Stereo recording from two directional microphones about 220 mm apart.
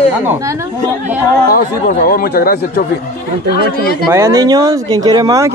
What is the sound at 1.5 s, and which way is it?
Speech, 40° left (ahead or behind).